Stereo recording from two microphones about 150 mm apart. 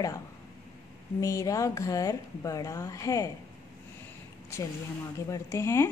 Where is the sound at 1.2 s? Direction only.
20° left (ahead or behind).